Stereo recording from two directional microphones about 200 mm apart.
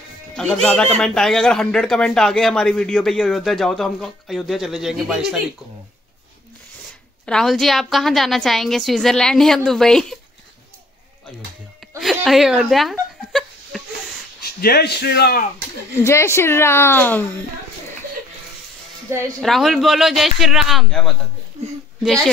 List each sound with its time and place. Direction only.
0.4 s a man's voice: 5° left (ahead or behind)
7.2 s a man's voice: centre (ahead or behind)
12.0 s a woman's voice: centre (ahead or behind)
13.3 s a sound: centre (ahead or behind)
14.4 s speech: 50° left (ahead or behind)
16.0 s speech: 15° left (ahead or behind)
19.1 s a woman's voice: 15° right (ahead or behind)
19.4 s a man's voice: centre (ahead or behind)
22.0 s a man's voice: centre (ahead or behind)